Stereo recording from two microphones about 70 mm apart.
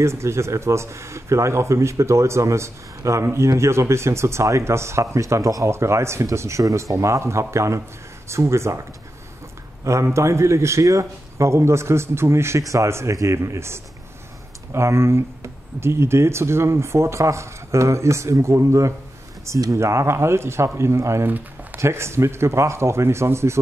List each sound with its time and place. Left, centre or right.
0.0 s speech: right
9.8 s speech: right